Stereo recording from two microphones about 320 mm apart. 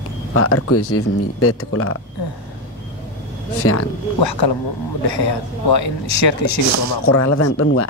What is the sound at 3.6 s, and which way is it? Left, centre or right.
Speech, left.